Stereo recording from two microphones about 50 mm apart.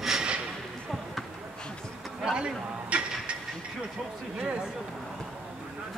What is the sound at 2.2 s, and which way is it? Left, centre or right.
Speech, centre.